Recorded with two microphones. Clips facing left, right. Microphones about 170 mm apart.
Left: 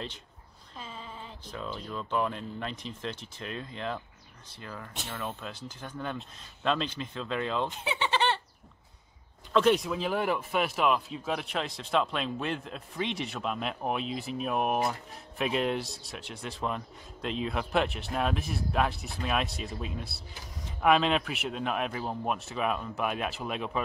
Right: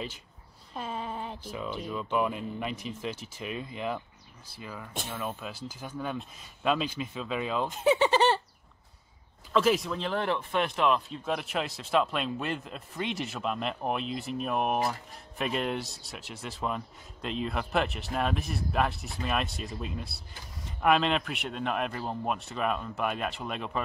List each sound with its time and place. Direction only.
0.7 s a sound: 60° right (ahead or behind)
1.5 s speech: 10° right (ahead or behind)
7.8 s speech: 45° right (ahead or behind)
9.5 s speech: centre (ahead or behind)